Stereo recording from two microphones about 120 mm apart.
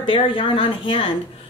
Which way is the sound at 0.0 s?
45° left (ahead or behind).